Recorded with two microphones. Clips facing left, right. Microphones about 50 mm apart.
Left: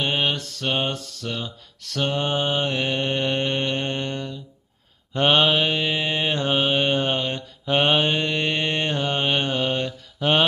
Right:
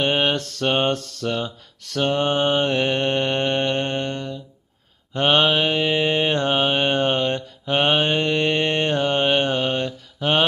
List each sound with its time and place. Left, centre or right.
0.0 s mantra: right
5.1 s mantra: centre
7.3 s mantra: centre